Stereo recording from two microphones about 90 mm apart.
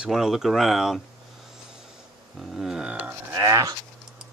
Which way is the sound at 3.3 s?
35° right (ahead or behind).